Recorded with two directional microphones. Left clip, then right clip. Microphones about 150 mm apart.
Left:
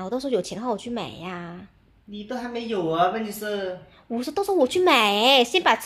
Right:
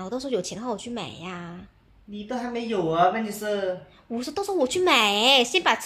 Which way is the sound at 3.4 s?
10° right (ahead or behind).